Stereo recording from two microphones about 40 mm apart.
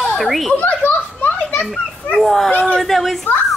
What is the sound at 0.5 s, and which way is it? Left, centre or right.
Children playing, left.